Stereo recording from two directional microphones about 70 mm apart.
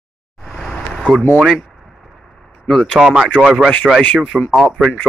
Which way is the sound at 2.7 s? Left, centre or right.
Centre.